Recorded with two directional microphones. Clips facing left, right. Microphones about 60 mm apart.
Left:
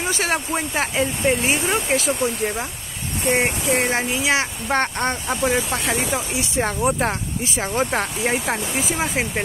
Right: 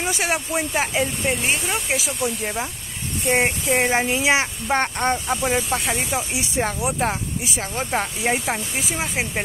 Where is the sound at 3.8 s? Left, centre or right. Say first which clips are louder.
Right 2 dB; right.